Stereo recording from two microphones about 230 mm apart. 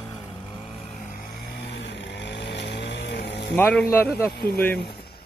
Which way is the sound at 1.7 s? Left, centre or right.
Left.